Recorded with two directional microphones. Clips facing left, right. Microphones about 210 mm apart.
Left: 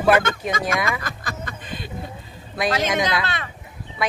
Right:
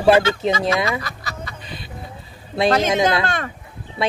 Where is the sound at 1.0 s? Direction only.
50° left (ahead or behind).